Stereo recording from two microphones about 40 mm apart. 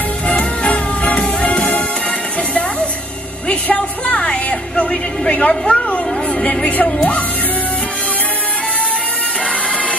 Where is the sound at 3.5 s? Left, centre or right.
Left.